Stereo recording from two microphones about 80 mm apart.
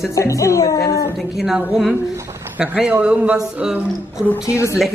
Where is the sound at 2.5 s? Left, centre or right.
Centre.